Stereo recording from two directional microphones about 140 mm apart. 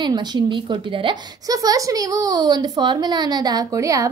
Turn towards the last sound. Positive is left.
turn(degrees=-25)  # may be behind; listen again after turning